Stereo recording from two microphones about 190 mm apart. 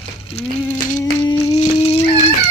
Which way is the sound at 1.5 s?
35° left (ahead or behind).